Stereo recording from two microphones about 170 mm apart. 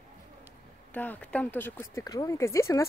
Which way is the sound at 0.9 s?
10° left (ahead or behind).